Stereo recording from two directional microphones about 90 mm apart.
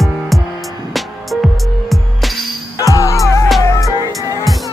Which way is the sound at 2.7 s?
35° left (ahead or behind).